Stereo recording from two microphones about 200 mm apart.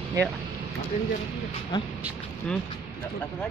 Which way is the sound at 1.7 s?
20° left (ahead or behind).